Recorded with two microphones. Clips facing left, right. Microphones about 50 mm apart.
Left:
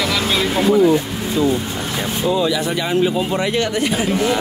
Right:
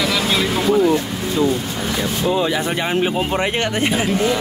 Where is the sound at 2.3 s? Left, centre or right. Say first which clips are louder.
Left 2 dB; right.